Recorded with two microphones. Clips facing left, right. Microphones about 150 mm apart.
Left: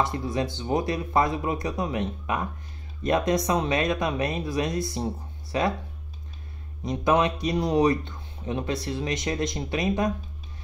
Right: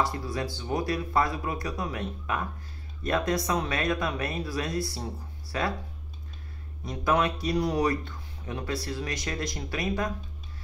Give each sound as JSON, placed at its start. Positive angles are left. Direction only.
{"t": 0.0, "sound": "speech", "side_deg": 20}
{"t": 6.8, "sound": "speech", "side_deg": 20}